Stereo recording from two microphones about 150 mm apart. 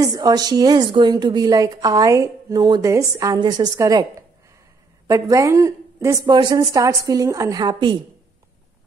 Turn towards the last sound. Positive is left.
turn(degrees=-30)  # may be behind; listen again after turning